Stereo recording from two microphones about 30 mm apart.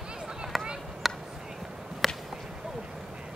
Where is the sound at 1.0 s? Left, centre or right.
Centre.